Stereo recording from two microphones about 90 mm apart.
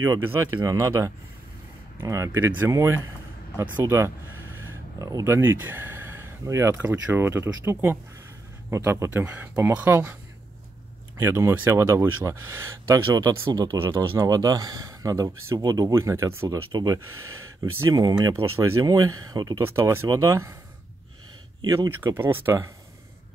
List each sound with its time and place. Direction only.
0.0 s speech: 30° right (ahead or behind)
6.4 s speech: 35° right (ahead or behind)
9.1 s speech: 20° right (ahead or behind)
11.1 s speech: 30° right (ahead or behind)
16.7 s speech: 40° right (ahead or behind)
18.3 s speech: 35° right (ahead or behind)
19.6 s speech: 30° right (ahead or behind)
22.0 s speech: 25° right (ahead or behind)